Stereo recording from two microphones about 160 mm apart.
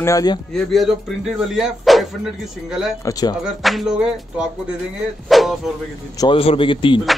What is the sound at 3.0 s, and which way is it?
Speech, 25° left (ahead or behind).